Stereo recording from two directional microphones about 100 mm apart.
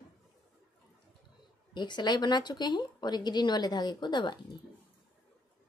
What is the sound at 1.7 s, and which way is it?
A woman's voice, 45° left (ahead or behind).